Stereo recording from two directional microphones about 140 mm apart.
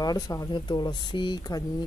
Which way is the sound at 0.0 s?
25° left (ahead or behind).